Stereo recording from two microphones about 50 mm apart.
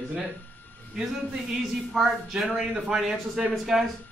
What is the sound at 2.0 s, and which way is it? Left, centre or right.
A man's voice, centre.